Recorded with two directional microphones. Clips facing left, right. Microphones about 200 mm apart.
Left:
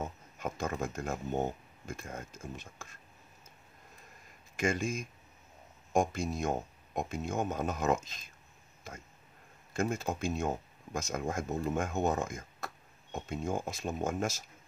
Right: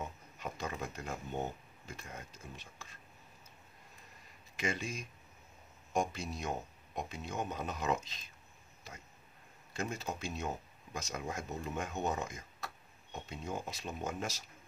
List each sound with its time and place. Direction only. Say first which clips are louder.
0.0 s speech: left 5 dB; 50° left (ahead or behind)
4.6 s speech: left 6 dB; 45° left (ahead or behind)